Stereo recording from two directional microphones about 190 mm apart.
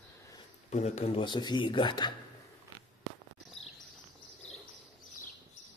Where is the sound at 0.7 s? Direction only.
35° left (ahead or behind).